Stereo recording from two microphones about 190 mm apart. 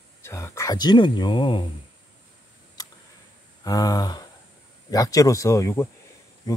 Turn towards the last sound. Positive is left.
turn(degrees=15)  # may be behind; listen again after turning